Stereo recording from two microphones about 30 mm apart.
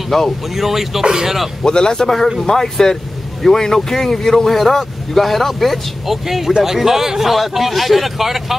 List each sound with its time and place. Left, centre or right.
0.1 s speech: centre
0.6 s a man's voice: centre
1.6 s a man's voice: left; by 7.3 s centre
7.3 s speech: centre